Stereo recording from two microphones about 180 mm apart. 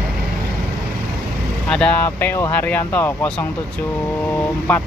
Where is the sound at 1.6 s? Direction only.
5° left (ahead or behind).